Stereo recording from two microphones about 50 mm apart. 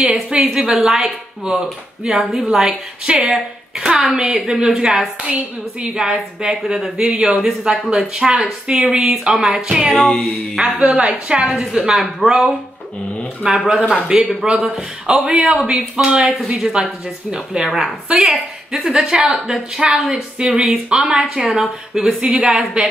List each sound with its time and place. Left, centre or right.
0.0 s speech: centre
4.1 s speech: centre
9.9 s music: centre
10.6 s speech: right
11.4 s speech: centre
13.7 s speech: centre
17.6 s a woman's voice: centre
18.0 s speech: right
18.3 s speech: centre